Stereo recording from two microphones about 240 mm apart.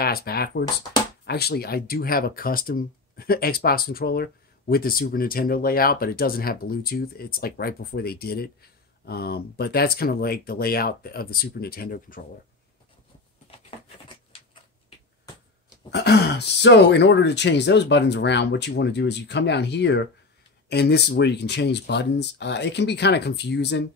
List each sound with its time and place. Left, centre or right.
0.0 s speech: left
13.5 s a sound: left
15.9 s speech: left